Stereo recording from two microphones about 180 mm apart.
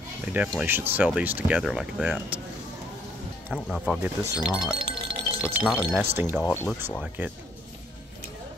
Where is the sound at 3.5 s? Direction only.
Centre (ahead or behind).